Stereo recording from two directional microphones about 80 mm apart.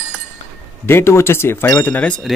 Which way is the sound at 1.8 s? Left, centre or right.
Centre.